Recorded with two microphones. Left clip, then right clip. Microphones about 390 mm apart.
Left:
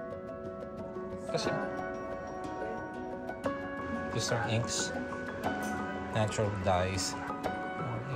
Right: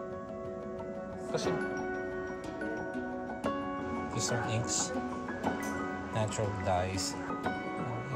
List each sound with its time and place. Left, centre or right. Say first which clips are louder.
4.3 s speech: left 2 dB; centre
6.1 s speech: left 3 dB; centre